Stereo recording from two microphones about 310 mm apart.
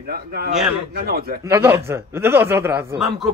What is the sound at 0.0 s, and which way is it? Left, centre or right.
Speech, right.